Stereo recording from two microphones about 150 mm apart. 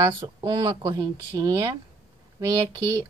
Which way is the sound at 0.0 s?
25° right (ahead or behind).